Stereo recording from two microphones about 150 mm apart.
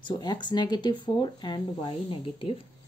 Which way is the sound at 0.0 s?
30° left (ahead or behind).